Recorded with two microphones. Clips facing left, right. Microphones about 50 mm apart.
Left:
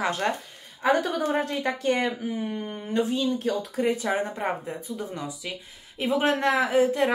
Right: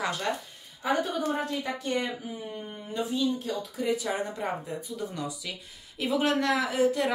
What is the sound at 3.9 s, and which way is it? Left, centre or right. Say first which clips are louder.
A woman's voice: left 1 dB; left.